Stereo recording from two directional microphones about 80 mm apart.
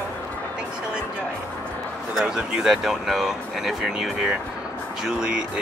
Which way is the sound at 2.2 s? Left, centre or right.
Centre.